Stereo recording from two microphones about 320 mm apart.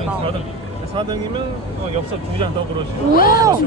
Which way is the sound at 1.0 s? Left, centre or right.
Centre.